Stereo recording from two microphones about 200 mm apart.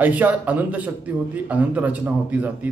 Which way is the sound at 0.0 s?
10° right (ahead or behind).